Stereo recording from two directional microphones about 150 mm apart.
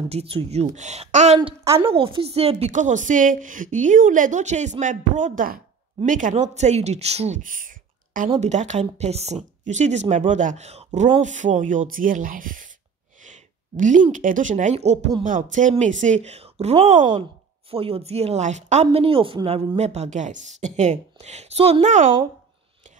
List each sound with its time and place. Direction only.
0.1 s speech: 40° right (ahead or behind)
1.6 s a woman's voice: 20° right (ahead or behind)
1.9 s a woman's voice: 40° right (ahead or behind); by 8.3 s 65° right (ahead or behind)
8.3 s speech: 50° right (ahead or behind)
11.1 s a woman's voice: 55° right (ahead or behind)
13.2 s a sound: 55° right (ahead or behind)
14.1 s a woman's voice: 60° right (ahead or behind)
15.2 s a woman's voice: 60° right (ahead or behind)
18.9 s speech: 35° right (ahead or behind); by 22.1 s 55° right (ahead or behind)